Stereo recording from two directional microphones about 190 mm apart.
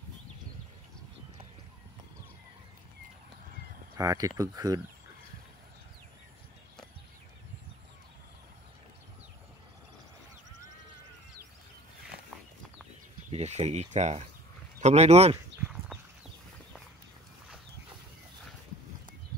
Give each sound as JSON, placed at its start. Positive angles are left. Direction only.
{"t": 3.9, "sound": "speech", "side_deg": -20}
{"t": 13.3, "sound": "speech", "side_deg": -35}